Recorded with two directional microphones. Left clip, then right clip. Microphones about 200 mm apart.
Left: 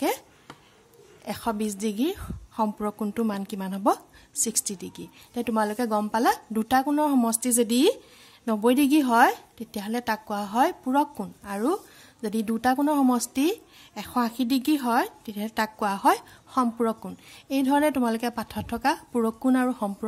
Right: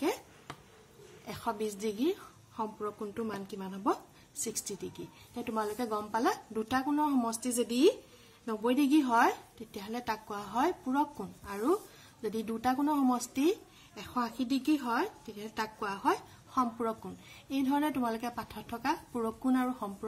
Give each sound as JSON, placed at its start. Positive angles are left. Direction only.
{"t": 1.2, "sound": "a woman's voice", "side_deg": 45}